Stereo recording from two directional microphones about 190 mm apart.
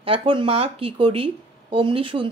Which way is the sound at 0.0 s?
30° right (ahead or behind).